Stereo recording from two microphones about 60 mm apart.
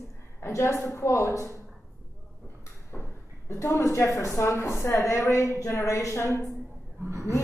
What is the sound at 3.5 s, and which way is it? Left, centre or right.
A woman's voice, left.